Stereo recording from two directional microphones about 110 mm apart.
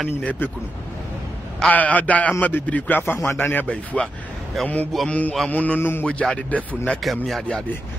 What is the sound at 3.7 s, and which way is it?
A man's voice, 10° left (ahead or behind).